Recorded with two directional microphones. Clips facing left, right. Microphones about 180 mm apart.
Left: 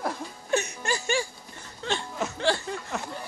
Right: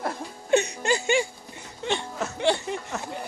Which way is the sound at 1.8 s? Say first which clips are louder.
Right 2 dB; 20° right (ahead or behind).